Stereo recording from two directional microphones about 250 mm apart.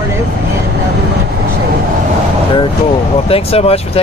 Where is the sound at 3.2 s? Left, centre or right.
Left.